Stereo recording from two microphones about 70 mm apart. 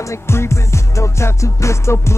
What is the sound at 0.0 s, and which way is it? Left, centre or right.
Music, left.